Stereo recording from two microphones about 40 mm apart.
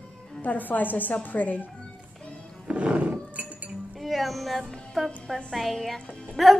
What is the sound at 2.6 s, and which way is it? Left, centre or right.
Roaring cats, right.